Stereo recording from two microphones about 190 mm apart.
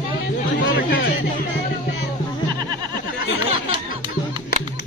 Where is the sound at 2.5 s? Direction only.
20° right (ahead or behind).